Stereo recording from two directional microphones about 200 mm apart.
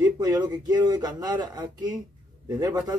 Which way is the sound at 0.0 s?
20° right (ahead or behind).